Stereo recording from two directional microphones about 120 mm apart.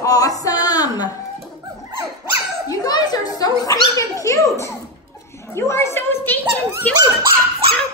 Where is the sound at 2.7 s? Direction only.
35° left (ahead or behind).